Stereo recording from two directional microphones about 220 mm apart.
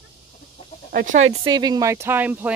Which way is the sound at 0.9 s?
45° right (ahead or behind).